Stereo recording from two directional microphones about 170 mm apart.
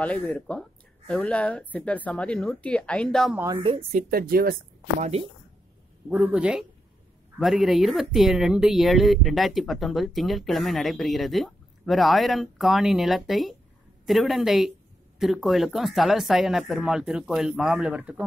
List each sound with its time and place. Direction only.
0.0 s speech: 10° left (ahead or behind)
3.3 s speech: 20° right (ahead or behind)
3.6 s a woman's voice: 35° right (ahead or behind)
4.1 s speech: 60° right (ahead or behind)
5.0 s a woman's voice: 40° right (ahead or behind)
6.0 s speech: 5° right (ahead or behind)